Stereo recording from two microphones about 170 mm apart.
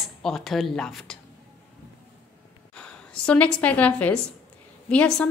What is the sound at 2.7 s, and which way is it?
A woman's voice, 5° left (ahead or behind).